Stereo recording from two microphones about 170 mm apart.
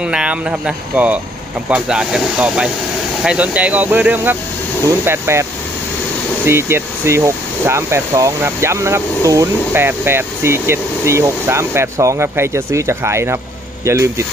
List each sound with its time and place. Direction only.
0.0 s speech: 5° right (ahead or behind)